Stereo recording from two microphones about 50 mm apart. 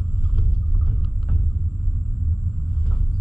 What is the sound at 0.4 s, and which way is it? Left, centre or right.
Vehicle, centre.